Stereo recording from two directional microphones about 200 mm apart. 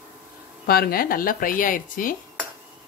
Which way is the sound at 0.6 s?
50° left (ahead or behind).